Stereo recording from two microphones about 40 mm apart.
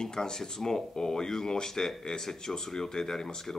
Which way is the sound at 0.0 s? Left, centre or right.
Centre.